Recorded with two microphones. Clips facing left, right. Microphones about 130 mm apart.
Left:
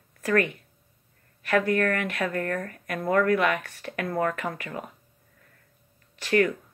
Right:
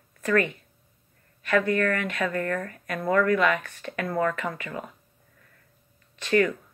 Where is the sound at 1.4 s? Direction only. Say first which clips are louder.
Even; 45° left (ahead or behind).